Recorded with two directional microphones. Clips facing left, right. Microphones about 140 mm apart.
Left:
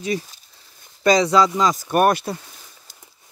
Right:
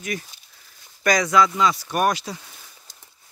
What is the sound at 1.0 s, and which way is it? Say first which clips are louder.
Speech: left 3 dB; 25° left (ahead or behind).